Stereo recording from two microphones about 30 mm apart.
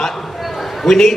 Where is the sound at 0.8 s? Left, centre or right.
Centre.